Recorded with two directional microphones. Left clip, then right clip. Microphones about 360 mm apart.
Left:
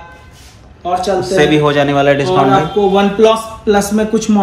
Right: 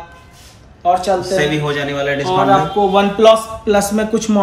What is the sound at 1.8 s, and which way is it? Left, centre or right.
A man's voice, centre.